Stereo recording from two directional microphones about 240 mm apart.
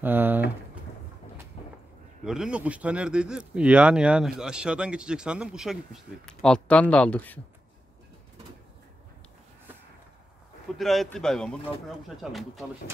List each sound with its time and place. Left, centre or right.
0.0 s typing: centre
2.2 s speech: centre
10.8 s speech: centre